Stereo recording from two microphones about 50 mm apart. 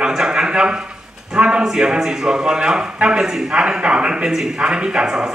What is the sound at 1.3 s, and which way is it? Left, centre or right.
A man's voice, centre.